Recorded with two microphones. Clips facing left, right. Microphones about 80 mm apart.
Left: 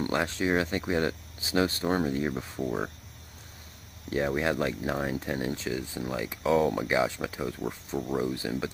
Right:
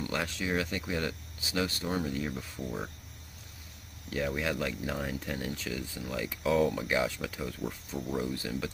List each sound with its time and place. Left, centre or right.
0.1 s speech: left
4.1 s speech: left